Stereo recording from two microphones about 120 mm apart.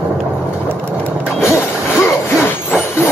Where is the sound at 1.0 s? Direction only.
15° left (ahead or behind).